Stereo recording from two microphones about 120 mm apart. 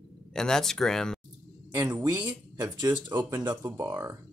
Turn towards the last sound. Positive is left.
turn(degrees=-30)  # may be behind; listen again after turning